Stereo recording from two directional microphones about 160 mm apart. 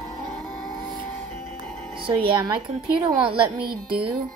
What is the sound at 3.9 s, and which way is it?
Speech, 35° right (ahead or behind).